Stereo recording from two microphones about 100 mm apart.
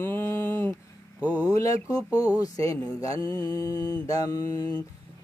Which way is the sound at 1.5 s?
35° left (ahead or behind).